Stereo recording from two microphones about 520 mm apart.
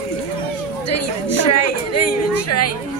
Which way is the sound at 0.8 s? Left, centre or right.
Left.